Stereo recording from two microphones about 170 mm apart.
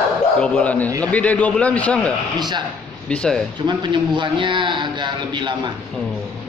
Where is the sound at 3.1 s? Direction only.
5° left (ahead or behind).